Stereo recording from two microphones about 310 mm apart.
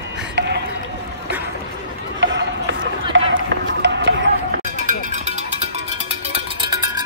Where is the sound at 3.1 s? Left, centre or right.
Right.